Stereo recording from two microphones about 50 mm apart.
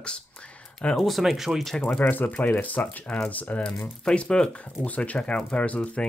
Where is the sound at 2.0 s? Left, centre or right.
Left; by 4.6 s centre.